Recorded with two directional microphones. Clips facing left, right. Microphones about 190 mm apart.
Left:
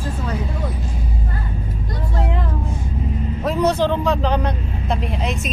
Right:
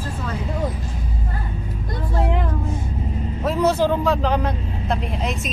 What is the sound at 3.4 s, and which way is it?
Speech, 5° right (ahead or behind).